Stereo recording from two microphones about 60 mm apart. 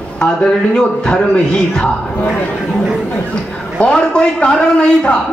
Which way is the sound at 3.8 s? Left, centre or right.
Centre.